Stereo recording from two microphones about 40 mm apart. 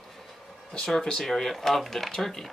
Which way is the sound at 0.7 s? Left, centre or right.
Centre.